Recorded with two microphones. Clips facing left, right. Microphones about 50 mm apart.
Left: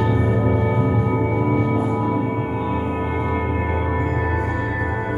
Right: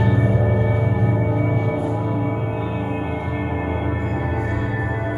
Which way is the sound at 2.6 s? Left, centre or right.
Centre.